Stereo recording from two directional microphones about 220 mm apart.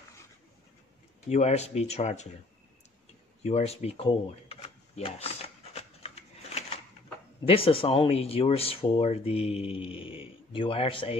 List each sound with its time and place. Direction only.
1.3 s speech: 30° left (ahead or behind)
3.4 s a sound: 30° left (ahead or behind)
7.4 s speech: 25° left (ahead or behind)